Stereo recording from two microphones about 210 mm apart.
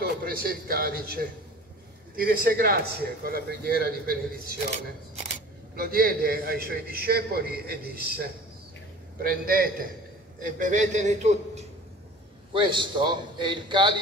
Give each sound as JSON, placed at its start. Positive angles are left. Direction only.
{"t": 0.0, "sound": "a man's voice", "side_deg": -45}
{"t": 5.8, "sound": "a man's voice", "side_deg": -45}
{"t": 12.5, "sound": "a man's voice", "side_deg": -20}